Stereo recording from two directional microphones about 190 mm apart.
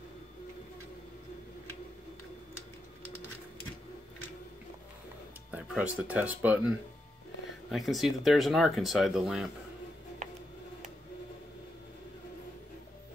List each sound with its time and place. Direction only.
5.5 s speech: 5° right (ahead or behind)
7.7 s speech: centre (ahead or behind)